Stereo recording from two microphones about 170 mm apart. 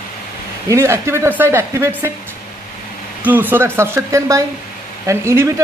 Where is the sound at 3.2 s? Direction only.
10° right (ahead or behind).